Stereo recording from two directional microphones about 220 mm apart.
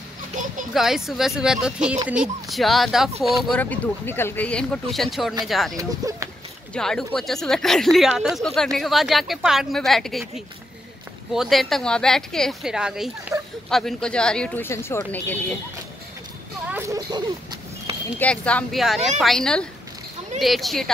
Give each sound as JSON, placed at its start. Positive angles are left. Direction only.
{"t": 0.4, "sound": "children playing", "side_deg": -35}
{"t": 0.7, "sound": "speech", "side_deg": 0}
{"t": 5.8, "sound": "speech", "side_deg": -15}
{"t": 6.7, "sound": "speech", "side_deg": 0}
{"t": 13.3, "sound": "a sound", "side_deg": -15}
{"t": 13.7, "sound": "speech", "side_deg": 0}
{"t": 16.6, "sound": "a sound", "side_deg": -10}
{"t": 18.2, "sound": "speech", "side_deg": 5}